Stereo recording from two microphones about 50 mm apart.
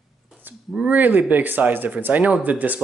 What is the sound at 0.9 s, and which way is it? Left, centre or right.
Speech, right.